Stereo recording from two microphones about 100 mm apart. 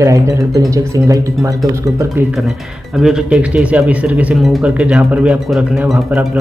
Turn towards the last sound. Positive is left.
turn(degrees=-10)  # may be behind; listen again after turning